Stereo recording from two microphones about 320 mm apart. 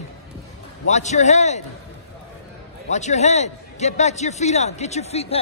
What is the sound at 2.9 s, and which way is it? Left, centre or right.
A man's voice, left.